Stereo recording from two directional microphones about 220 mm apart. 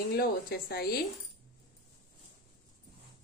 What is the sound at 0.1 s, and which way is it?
Speech, 45° left (ahead or behind).